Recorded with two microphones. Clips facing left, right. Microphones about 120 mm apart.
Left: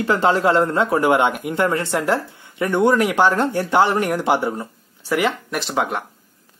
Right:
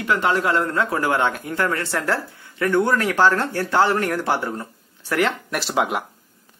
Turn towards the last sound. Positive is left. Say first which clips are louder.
# even
turn(degrees=-5)  # may be behind; listen again after turning